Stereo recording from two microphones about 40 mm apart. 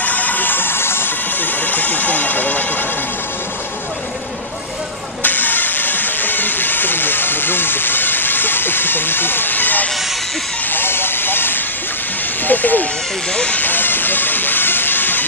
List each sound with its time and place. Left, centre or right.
0.0 s music: left
1.6 s a sound: left
5.2 s steam: left
10.7 s vehicle: left
12.4 s speech: left
13.6 s hiss: left